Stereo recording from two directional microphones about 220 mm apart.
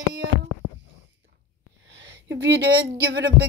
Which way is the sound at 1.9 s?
55° right (ahead or behind).